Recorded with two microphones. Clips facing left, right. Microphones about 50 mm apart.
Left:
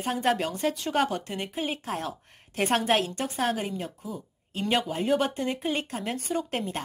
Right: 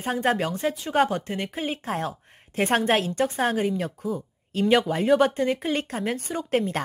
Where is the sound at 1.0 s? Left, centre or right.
Right.